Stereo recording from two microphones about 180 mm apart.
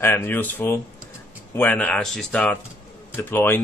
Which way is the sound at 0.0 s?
10° left (ahead or behind).